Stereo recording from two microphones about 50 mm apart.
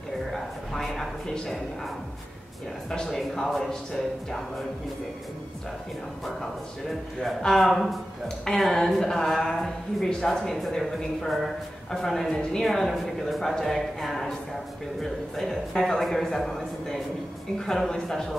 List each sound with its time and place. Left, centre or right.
0.3 s a sound: centre
2.9 s speech: centre
7.2 s speech: centre
11.9 s speech: centre